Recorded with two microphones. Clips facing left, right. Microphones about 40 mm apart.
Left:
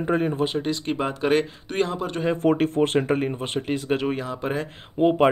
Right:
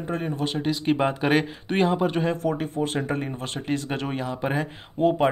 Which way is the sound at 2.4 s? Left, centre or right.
Left.